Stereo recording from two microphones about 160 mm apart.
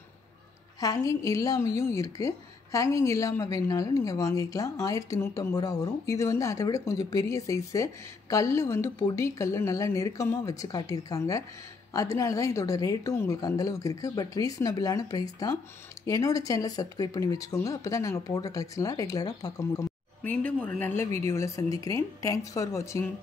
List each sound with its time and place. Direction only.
0.7 s a woman's voice: 20° left (ahead or behind)
20.2 s a woman's voice: 10° left (ahead or behind)